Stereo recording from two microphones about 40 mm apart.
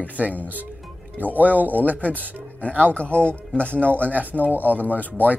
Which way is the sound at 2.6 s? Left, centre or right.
Left.